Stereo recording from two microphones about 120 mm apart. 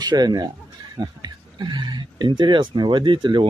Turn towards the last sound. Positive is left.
turn(degrees=-40)  # may be behind; listen again after turning